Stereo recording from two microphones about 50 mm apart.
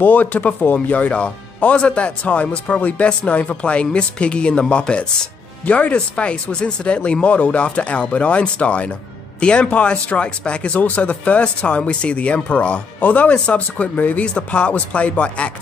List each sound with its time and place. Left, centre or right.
0.0 s speech: left